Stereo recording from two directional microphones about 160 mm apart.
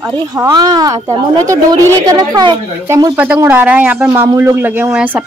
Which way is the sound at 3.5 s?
10° right (ahead or behind).